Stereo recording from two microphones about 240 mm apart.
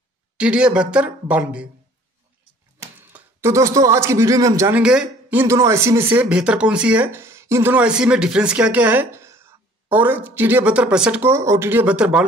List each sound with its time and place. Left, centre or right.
0.4 s a woman's voice: centre
3.0 s speech: centre